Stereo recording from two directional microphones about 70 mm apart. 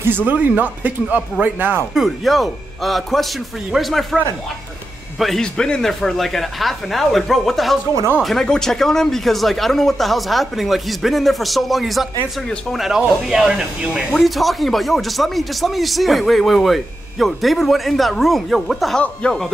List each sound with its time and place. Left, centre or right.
0.0 s speech: right
2.0 s speech: centre
5.2 s speech: centre
18.9 s speech: centre